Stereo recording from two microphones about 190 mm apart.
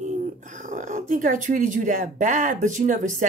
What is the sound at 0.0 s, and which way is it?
Speech, 40° right (ahead or behind).